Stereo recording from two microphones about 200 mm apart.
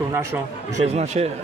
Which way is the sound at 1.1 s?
35° right (ahead or behind).